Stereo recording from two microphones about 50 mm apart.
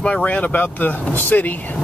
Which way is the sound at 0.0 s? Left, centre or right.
Left.